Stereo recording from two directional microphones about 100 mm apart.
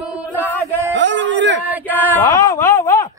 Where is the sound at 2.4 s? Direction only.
30° left (ahead or behind).